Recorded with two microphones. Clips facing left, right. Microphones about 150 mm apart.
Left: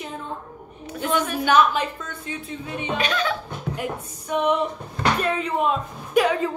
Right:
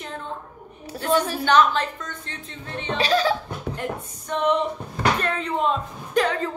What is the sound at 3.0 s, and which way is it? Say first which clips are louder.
Speech: right 5 dB; 35° right (ahead or behind).